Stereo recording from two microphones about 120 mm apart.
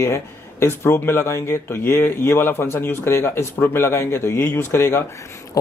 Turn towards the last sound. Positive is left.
turn(degrees=20)  # may be behind; listen again after turning